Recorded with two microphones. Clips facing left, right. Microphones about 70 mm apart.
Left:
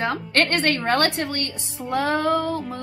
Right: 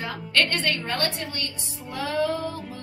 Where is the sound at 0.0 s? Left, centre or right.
Left.